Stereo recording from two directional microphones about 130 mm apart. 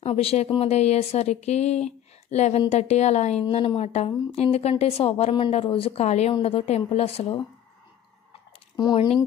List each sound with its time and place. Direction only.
0.0 s speech: 50° left (ahead or behind)
3.4 s a woman's voice: 45° left (ahead or behind)
6.3 s a woman's voice: 45° left (ahead or behind)
6.6 s a woman's voice: 55° left (ahead or behind)
8.7 s speech: 35° left (ahead or behind)